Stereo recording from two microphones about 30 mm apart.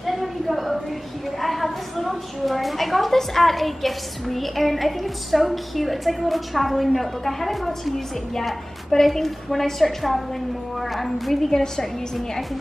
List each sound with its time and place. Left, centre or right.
0.0 s a sound: centre
2.4 s a woman's voice: centre
9.0 s a woman's voice: centre
11.5 s a woman's voice: centre